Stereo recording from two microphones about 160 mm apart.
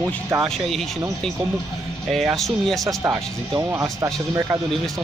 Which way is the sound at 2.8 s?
20° right (ahead or behind).